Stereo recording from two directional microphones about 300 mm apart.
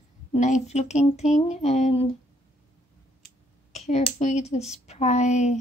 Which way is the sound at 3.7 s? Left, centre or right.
Left.